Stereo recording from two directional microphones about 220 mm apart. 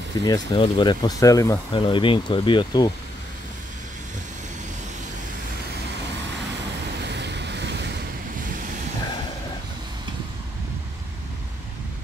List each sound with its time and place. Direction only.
0.2 s speech: 20° left (ahead or behind)
7.0 s waves: 50° right (ahead or behind)